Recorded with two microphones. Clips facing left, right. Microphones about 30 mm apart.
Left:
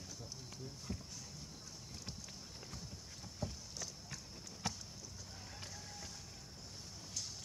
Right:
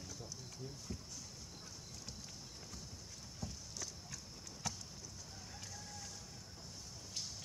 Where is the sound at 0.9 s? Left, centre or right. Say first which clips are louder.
Left 3 dB; left.